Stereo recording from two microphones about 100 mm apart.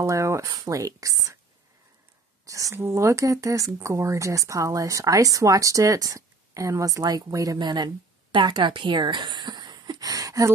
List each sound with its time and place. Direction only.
0.0 s speech: 30° right (ahead or behind)
2.4 s speech: 30° right (ahead or behind)